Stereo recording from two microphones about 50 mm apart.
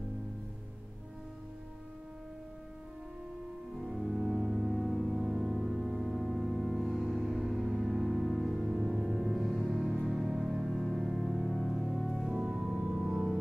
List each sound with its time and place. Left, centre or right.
3.8 s music: centre
12.5 s organ: centre
13.0 s ambient music: centre